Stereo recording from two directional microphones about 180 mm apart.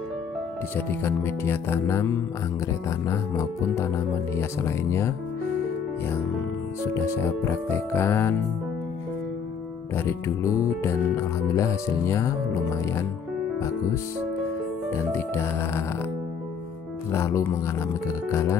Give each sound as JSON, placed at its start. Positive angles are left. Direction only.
{"t": 0.7, "sound": "music", "side_deg": 15}
{"t": 6.9, "sound": "music", "side_deg": 15}
{"t": 9.9, "sound": "music", "side_deg": 15}
{"t": 14.9, "sound": "music", "side_deg": 15}
{"t": 17.1, "sound": "music", "side_deg": 15}